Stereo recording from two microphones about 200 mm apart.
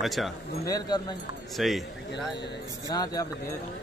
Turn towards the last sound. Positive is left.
turn(degrees=20)  # may be behind; listen again after turning